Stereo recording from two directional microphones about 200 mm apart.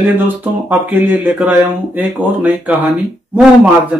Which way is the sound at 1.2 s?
10° right (ahead or behind).